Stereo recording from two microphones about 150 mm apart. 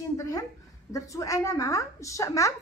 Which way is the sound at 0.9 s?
20° left (ahead or behind).